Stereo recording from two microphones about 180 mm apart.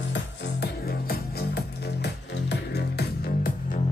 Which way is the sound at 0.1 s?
60° left (ahead or behind).